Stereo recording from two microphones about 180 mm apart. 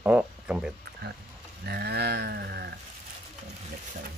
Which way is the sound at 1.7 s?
60° right (ahead or behind).